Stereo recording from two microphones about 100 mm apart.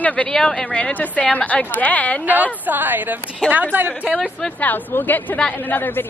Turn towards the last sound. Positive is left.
turn(degrees=20)  # may be behind; listen again after turning